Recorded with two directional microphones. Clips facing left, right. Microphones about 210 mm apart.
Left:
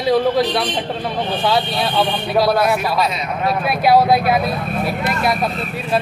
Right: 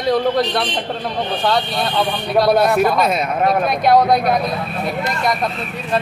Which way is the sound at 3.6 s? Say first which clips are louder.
Left 3 dB; 5° left (ahead or behind).